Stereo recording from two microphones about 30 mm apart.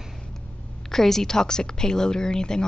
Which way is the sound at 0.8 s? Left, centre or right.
Centre.